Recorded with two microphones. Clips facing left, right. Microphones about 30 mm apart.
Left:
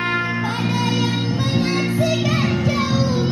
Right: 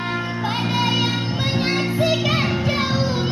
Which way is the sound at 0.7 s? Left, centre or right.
Right.